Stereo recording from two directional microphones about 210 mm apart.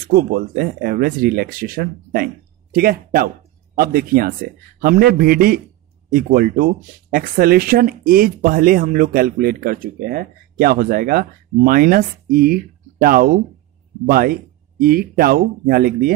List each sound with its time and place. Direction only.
0.1 s speech: 45° right (ahead or behind)